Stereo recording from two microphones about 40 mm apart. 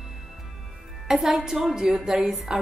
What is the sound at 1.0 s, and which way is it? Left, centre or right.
Speech, centre.